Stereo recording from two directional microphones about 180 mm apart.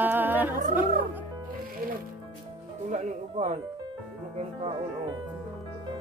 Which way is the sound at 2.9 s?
40° right (ahead or behind).